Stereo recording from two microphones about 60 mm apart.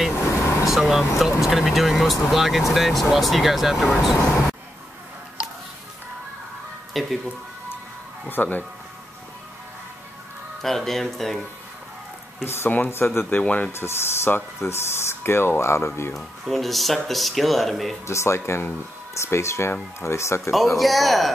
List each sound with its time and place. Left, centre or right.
0.1 s vehicle: left
0.7 s speech: centre
4.2 s speech: centre
6.9 s speech: centre
8.3 s speech: left
10.6 s speech: centre
12.4 s speech: left
13.4 s speech: left
13.7 s speech: left
16.1 s speech: centre
18.0 s speech: left
20.8 s speech: centre